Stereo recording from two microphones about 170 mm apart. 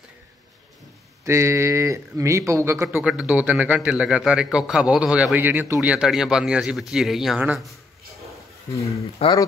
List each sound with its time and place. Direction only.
1.2 s speech: 15° right (ahead or behind)
9.2 s speech: 35° left (ahead or behind)